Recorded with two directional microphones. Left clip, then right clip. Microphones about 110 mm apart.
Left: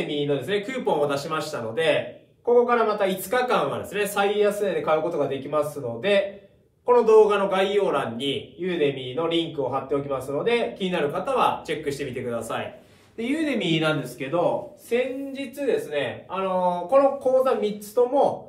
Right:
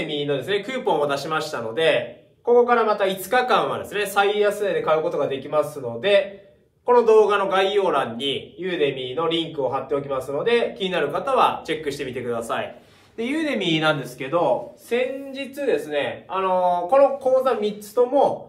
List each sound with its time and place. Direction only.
0.0 s speech: 15° right (ahead or behind)
0.6 s speech: 35° right (ahead or behind)
2.6 s a man's voice: 20° right (ahead or behind)
3.3 s speech: 30° right (ahead or behind)
4.4 s speech: 20° right (ahead or behind)
7.1 s speech: 35° right (ahead or behind)
8.6 s a man's voice: 20° right (ahead or behind); by 16.7 s 45° right (ahead or behind)
17.2 s speech: 15° right (ahead or behind)